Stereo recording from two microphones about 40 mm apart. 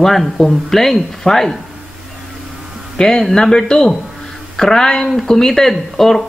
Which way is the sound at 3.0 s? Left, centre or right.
Centre.